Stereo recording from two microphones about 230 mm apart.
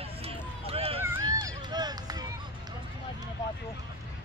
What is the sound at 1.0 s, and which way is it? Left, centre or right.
Run, centre.